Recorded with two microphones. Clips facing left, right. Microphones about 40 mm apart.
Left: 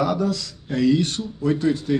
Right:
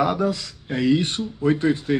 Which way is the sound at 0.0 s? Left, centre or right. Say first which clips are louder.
Right 1 dB; right.